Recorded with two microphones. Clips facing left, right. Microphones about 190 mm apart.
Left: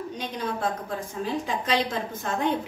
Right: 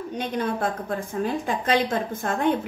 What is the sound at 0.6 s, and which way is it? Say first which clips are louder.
A woman's voice: right 2 dB; 55° right (ahead or behind).